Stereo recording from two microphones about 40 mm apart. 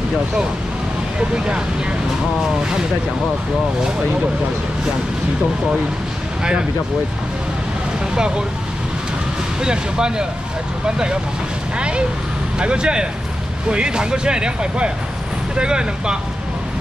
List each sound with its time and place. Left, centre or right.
9.6 s speech: centre
12.5 s speech: right